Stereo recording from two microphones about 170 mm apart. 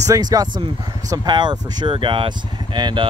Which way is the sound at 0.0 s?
20° right (ahead or behind).